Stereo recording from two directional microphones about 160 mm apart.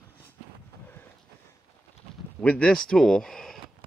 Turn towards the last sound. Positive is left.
turn(degrees=5)  # may be behind; listen again after turning